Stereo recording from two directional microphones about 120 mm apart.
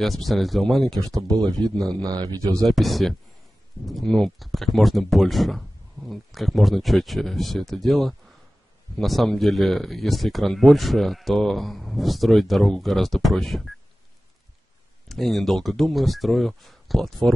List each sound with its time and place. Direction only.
0.0 s speech: centre (ahead or behind)
1.2 s speech: 35° right (ahead or behind)
1.8 s a man's voice: 5° left (ahead or behind)
2.0 s a man's voice: 30° right (ahead or behind)
2.6 s speech: centre (ahead or behind)
15.0 s speech: centre (ahead or behind)